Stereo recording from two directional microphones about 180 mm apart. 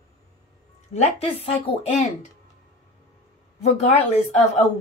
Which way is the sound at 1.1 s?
30° left (ahead or behind).